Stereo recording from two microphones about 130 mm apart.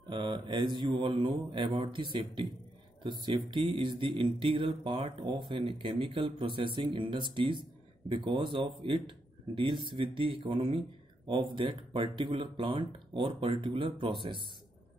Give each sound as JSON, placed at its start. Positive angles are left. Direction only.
{"t": 0.1, "sound": "speech", "side_deg": -40}